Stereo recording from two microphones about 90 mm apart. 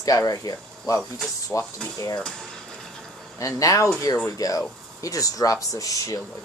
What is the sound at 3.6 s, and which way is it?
Speech, 40° left (ahead or behind).